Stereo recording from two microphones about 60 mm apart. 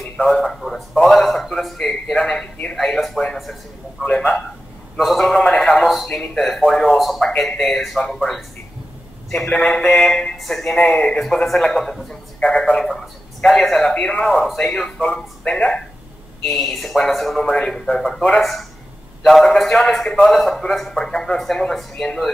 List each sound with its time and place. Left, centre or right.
0.2 s a man's voice: centre
4.0 s a man's voice: left
4.9 s a man's voice: centre
16.4 s a man's voice: centre